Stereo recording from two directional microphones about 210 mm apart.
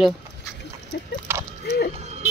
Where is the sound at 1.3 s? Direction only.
10° right (ahead or behind).